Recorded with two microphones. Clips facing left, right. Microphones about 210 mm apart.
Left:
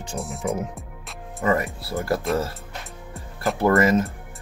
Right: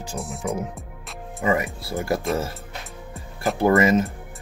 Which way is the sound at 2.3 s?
Centre (ahead or behind).